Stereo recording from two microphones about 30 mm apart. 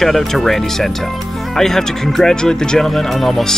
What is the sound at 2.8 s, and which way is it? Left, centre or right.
Speech, centre.